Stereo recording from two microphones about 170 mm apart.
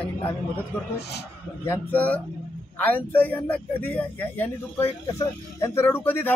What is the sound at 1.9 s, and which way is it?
Speech, 10° left (ahead or behind).